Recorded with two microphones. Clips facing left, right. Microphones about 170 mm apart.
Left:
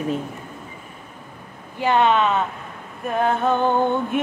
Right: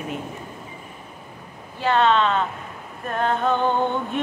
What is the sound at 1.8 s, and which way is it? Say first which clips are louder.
Speech: left 1 dB; 15° left (ahead or behind).